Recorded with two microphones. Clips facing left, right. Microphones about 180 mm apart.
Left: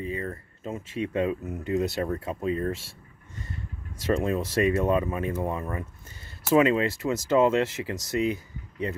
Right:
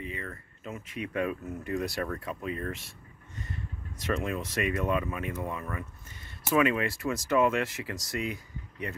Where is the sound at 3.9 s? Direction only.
30° left (ahead or behind).